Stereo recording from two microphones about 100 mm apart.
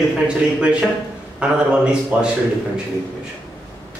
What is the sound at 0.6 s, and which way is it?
A man's voice, 10° right (ahead or behind).